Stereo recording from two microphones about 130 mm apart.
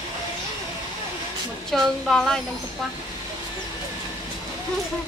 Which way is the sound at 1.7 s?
5° left (ahead or behind).